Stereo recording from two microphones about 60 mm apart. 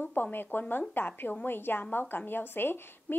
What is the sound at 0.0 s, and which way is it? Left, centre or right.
A woman's voice, left.